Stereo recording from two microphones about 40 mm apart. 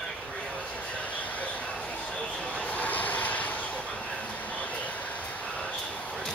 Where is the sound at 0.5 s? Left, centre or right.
Left.